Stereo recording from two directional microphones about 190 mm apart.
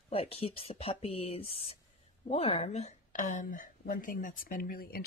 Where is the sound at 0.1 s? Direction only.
30° left (ahead or behind).